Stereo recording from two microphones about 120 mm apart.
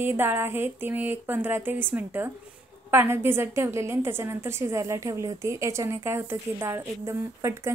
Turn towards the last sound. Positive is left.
turn(degrees=-25)  # may be behind; listen again after turning